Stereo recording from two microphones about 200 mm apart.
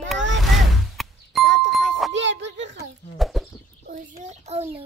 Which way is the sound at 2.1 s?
65° right (ahead or behind).